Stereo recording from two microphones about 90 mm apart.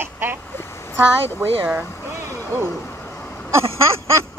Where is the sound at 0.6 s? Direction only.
30° left (ahead or behind).